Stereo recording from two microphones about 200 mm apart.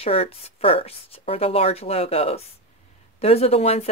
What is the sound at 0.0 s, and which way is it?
A woman's voice, 30° left (ahead or behind).